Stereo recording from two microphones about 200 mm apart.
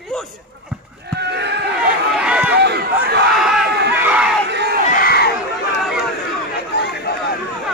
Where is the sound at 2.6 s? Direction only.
55° right (ahead or behind).